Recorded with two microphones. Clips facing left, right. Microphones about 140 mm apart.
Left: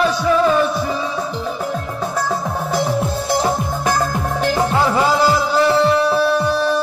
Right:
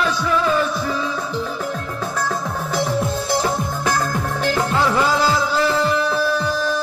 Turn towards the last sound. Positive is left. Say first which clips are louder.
# left 4 dB
turn(degrees=20)  # may be behind; listen again after turning